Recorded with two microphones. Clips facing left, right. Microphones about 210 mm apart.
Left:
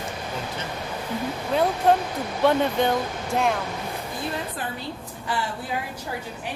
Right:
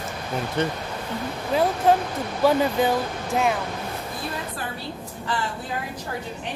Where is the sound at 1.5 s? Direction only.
Centre (ahead or behind).